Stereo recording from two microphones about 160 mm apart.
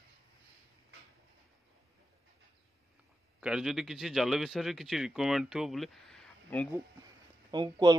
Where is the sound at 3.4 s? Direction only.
5° right (ahead or behind).